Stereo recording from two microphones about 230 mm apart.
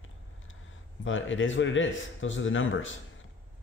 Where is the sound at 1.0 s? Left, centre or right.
Left.